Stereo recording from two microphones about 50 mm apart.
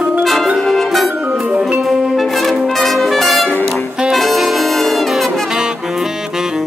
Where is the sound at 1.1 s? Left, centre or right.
Right.